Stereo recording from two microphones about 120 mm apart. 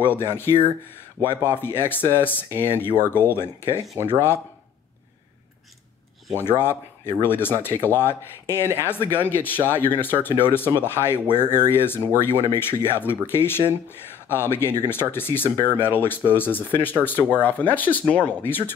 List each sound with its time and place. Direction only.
0.0 s speech: 20° left (ahead or behind)
4.0 s speech: 20° right (ahead or behind)
6.3 s speech: 20° left (ahead or behind)